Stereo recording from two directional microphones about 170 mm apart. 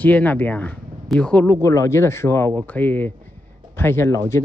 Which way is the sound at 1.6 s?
15° left (ahead or behind).